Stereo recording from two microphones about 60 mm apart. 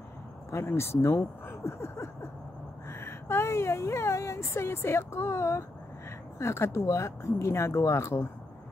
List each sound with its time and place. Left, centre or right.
0.5 s speech: left